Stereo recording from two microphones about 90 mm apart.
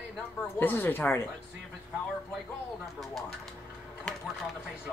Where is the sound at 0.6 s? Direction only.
20° left (ahead or behind).